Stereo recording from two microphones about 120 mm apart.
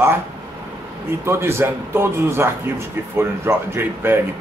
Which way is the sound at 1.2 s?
20° right (ahead or behind).